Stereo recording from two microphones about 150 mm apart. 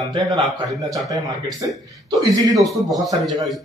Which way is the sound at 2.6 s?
Centre (ahead or behind).